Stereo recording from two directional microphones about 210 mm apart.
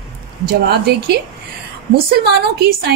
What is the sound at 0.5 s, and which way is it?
Speech, 50° right (ahead or behind).